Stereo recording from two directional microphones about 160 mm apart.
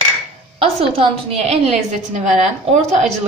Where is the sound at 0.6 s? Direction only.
35° right (ahead or behind).